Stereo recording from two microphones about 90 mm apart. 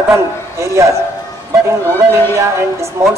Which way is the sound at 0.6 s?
35° right (ahead or behind).